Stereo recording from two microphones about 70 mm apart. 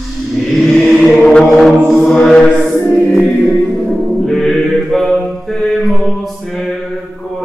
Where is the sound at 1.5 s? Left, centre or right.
Centre.